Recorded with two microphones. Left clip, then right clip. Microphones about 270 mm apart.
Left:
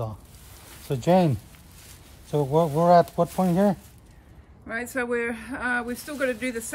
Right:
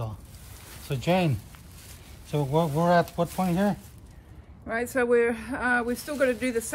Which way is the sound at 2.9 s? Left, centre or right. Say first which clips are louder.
Left 6 dB; centre.